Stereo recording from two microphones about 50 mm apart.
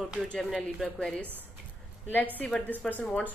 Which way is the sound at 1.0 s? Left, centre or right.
Left.